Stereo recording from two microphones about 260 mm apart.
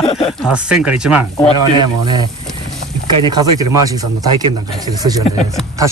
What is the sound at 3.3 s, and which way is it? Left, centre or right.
Speech, centre.